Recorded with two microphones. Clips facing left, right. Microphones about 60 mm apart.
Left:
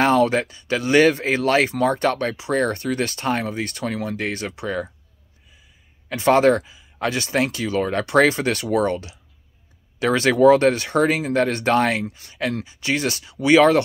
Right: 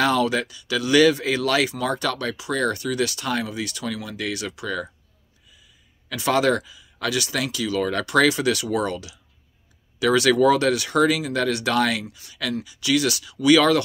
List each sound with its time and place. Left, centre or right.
0.0 s speech: left
6.0 s speech: left